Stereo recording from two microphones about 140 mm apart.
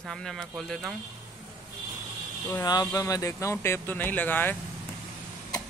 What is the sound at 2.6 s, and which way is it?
Speech, 30° left (ahead or behind).